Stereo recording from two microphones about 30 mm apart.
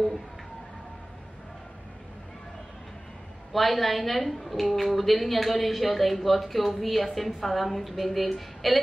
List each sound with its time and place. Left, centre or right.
3.5 s a woman's voice: centre